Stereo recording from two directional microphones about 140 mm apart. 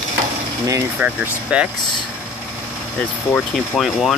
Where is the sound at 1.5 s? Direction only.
10° right (ahead or behind).